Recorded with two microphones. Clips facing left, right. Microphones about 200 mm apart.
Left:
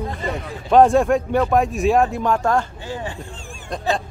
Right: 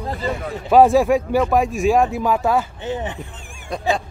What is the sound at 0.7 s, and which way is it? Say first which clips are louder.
Speech: right 1 dB; 5° right (ahead or behind).